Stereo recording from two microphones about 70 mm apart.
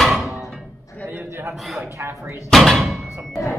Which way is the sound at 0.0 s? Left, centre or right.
Centre.